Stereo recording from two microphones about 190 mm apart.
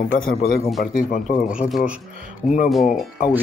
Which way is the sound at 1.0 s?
40° left (ahead or behind).